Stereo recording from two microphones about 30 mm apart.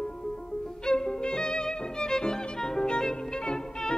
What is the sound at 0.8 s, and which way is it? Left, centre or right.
Violin, left.